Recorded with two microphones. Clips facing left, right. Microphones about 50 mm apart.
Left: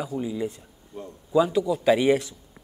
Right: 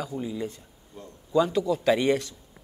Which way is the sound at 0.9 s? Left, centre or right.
Left.